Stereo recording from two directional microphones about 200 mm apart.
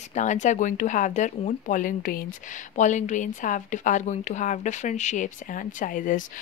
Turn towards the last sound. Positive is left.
turn(degrees=40)  # may be behind; listen again after turning